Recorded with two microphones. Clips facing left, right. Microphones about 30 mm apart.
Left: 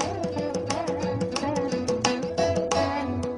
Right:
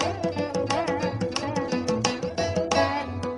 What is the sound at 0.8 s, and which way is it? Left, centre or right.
Music, right.